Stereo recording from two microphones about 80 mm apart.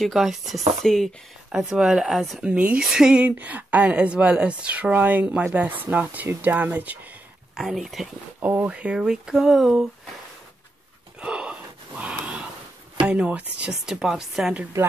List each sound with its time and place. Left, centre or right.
0.0 s speech: centre
2.4 s speech: centre
7.5 s speech: centre
8.4 s speech: right
8.6 s speech: centre
11.1 s gasp: centre
13.0 s speech: centre